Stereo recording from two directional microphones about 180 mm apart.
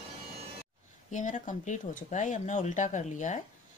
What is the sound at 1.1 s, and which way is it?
Speech, 45° left (ahead or behind).